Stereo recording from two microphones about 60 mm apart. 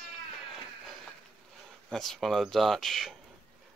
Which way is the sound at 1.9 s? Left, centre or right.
Centre.